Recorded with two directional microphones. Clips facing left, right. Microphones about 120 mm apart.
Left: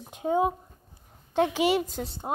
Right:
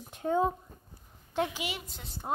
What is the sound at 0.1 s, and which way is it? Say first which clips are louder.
Speech: left 3 dB; 15° left (ahead or behind).